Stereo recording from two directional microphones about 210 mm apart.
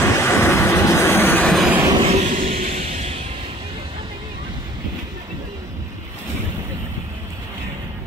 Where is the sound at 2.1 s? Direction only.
35° right (ahead or behind).